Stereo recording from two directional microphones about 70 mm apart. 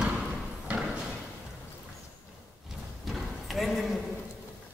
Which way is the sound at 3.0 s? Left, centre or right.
Centre.